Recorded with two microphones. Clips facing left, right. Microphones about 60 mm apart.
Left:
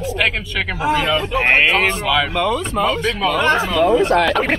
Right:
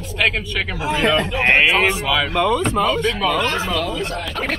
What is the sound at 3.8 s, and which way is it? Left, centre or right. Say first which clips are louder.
Speech: left 10 dB; left.